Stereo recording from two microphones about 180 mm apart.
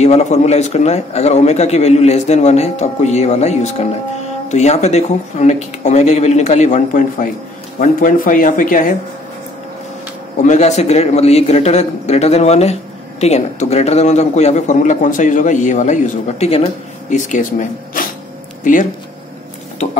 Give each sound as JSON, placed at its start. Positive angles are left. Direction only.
{"t": 0.0, "sound": "a man's voice", "side_deg": 40}
{"t": 10.4, "sound": "a man's voice", "side_deg": 40}